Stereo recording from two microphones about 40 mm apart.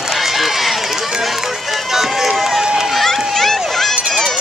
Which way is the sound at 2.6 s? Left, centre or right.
Centre.